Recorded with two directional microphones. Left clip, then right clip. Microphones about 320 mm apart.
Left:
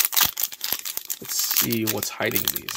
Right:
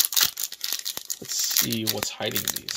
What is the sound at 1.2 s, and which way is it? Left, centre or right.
Speech, centre.